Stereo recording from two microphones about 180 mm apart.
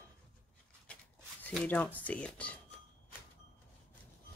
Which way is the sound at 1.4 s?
10° left (ahead or behind).